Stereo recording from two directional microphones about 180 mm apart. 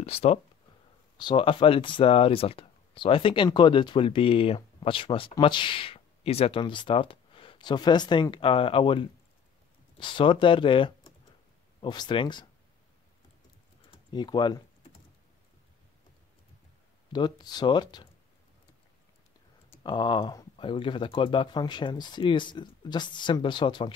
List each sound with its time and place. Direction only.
0.0 s speech: 35° left (ahead or behind)
13.8 s typing: 25° left (ahead or behind)
17.1 s speech: 25° left (ahead or behind)
19.7 s speech: 25° left (ahead or behind)